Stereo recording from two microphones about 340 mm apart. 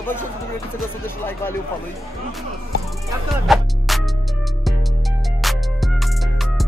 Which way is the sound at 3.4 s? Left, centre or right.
Centre.